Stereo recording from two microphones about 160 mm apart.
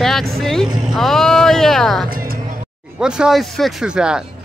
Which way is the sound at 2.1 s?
65° right (ahead or behind).